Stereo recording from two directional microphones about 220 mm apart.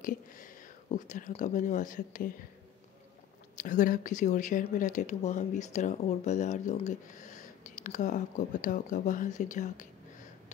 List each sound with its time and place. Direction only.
0.8 s speech: 35° left (ahead or behind)
3.5 s speech: 35° left (ahead or behind)